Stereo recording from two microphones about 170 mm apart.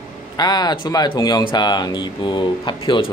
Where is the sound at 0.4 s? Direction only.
25° left (ahead or behind).